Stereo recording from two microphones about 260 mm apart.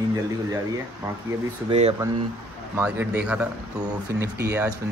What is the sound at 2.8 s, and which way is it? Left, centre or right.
Speech, centre.